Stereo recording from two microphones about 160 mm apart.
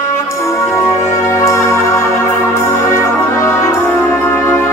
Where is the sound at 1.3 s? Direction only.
20° left (ahead or behind).